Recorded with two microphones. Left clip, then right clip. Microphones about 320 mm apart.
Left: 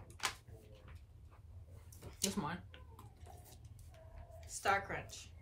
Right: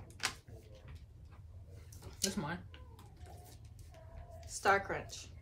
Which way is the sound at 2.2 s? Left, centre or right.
Centre.